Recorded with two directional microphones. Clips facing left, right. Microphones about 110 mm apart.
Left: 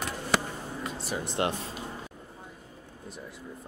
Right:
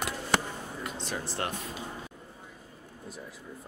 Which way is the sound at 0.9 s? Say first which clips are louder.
Left 2 dB; 5° left (ahead or behind).